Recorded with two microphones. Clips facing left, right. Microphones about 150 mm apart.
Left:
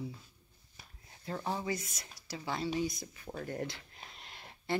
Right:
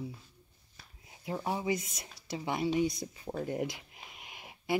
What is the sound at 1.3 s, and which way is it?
Speech, 15° right (ahead or behind).